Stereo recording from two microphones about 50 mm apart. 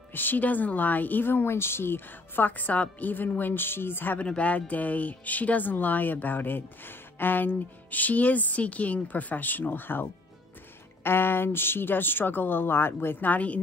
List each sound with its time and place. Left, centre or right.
0.1 s speech: left
4.2 s speech: left
11.1 s speech: left